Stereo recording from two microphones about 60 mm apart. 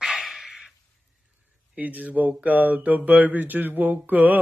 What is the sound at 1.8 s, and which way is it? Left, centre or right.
Mantra, right.